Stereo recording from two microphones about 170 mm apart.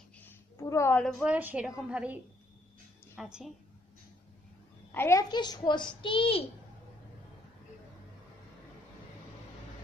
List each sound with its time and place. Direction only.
0.2 s a sound: 15° left (ahead or behind)
1.0 s a woman's voice: centre (ahead or behind)
3.2 s a woman's voice: 5° right (ahead or behind)
4.9 s a woman's voice: 15° left (ahead or behind); by 6.4 s 30° left (ahead or behind)